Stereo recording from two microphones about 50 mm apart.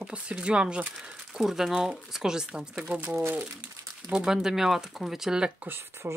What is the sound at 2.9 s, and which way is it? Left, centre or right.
Speech, right.